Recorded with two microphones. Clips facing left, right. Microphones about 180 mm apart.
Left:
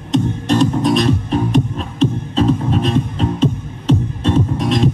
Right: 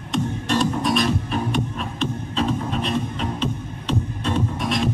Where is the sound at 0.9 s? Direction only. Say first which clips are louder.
Left 6 dB; 40° left (ahead or behind).